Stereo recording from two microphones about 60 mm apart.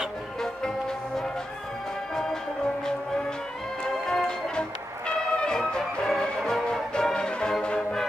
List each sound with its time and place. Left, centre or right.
0.4 s music: centre
3.9 s music: centre